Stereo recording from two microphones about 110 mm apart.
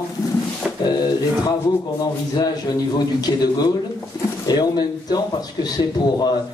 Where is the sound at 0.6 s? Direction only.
5° right (ahead or behind).